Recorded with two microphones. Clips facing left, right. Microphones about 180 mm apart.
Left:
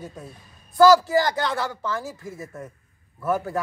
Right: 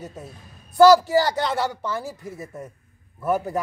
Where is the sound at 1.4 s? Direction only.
15° right (ahead or behind).